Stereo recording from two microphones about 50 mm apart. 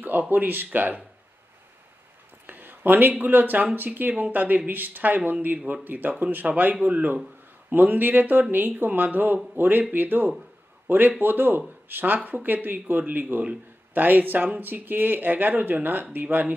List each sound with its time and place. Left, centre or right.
0.3 s speech: right
2.4 s speech: right